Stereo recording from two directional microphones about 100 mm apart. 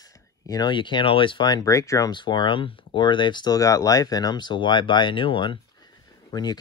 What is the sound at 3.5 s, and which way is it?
Speech, 35° left (ahead or behind).